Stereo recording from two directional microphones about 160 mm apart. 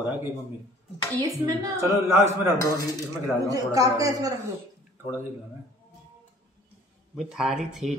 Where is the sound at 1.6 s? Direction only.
15° right (ahead or behind).